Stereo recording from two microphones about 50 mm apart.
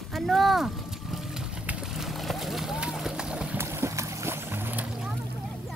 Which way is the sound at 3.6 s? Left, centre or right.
Right.